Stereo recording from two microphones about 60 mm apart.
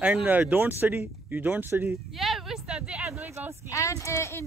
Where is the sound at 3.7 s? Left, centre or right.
Left.